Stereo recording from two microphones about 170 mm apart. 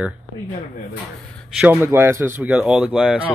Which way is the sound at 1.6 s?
10° right (ahead or behind).